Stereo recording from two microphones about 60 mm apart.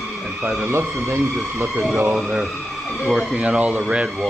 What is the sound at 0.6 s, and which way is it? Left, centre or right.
Speech, right.